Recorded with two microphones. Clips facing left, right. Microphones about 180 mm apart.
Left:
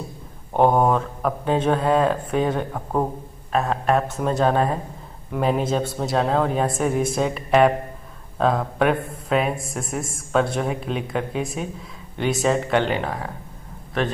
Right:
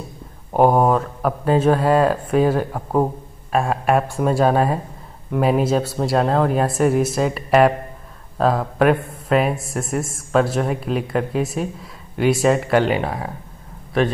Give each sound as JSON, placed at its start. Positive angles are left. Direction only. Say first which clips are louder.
{"t": 0.5, "sound": "speech", "louder": "right 2 dB", "side_deg": -5}